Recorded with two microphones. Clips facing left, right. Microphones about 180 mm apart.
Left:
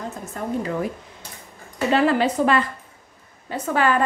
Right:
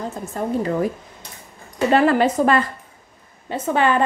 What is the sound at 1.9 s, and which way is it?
Speech, 50° right (ahead or behind).